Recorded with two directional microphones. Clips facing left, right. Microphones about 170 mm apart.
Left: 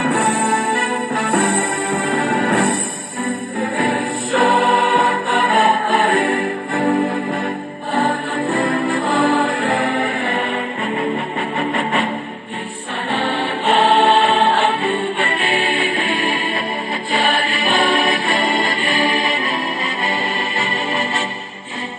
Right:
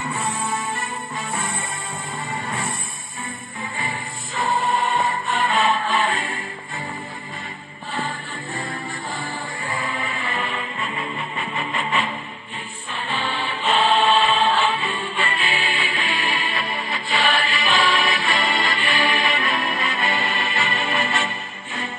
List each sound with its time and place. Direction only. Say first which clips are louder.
0.0 s music: left 10 dB; 70° left (ahead or behind)
13.1 s music: left 7 dB; 65° left (ahead or behind); by 21.3 s 35° left (ahead or behind)